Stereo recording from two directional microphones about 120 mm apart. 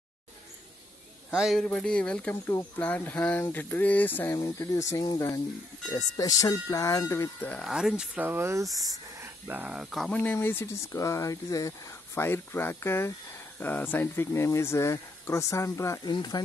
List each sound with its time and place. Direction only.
1.3 s speech: 5° right (ahead or behind)
1.6 s speech: 5° left (ahead or behind)
4.6 s speech: 25° left (ahead or behind)
7.6 s speech: 5° right (ahead or behind); by 9.3 s 30° right (ahead or behind)
9.5 s speech: 10° right (ahead or behind)
10.1 s speech: 15° left (ahead or behind)
12.2 s speech: 20° left (ahead or behind)
16.1 s speech: 40° left (ahead or behind)